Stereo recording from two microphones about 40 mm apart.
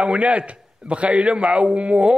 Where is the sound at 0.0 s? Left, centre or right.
Right.